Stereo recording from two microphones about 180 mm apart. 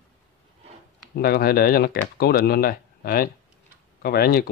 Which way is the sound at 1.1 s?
60° left (ahead or behind).